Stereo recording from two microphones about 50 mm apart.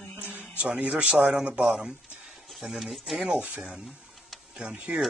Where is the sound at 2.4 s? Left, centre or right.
Centre.